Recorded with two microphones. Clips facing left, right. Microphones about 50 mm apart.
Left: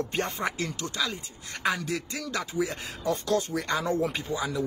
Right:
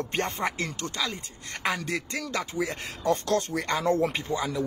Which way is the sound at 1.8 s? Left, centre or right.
Right.